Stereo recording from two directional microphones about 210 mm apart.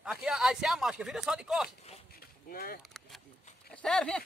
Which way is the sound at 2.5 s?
45° left (ahead or behind).